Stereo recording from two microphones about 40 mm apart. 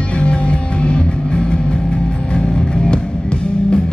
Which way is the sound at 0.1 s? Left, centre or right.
Left.